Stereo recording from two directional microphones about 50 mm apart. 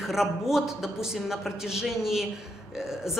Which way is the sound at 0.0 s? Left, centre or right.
Centre.